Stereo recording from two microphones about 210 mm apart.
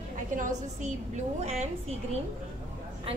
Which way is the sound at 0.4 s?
35° right (ahead or behind).